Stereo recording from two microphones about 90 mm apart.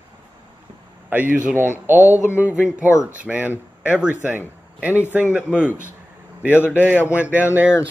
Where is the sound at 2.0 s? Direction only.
35° left (ahead or behind).